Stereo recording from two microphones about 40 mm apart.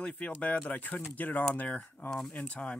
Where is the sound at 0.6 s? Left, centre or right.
Left.